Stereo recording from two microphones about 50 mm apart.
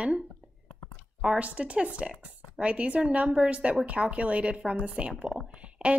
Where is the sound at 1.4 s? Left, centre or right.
Right.